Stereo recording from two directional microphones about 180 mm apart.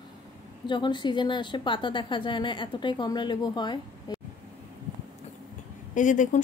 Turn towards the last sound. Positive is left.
turn(degrees=45)  # may be behind; listen again after turning